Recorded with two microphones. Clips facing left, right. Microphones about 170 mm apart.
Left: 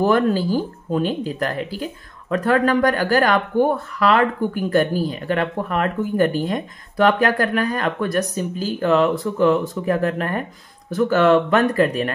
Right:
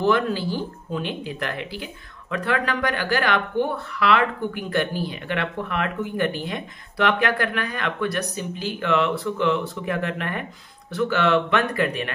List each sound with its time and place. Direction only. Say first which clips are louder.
0.0 s speech: left 4 dB; 45° left (ahead or behind)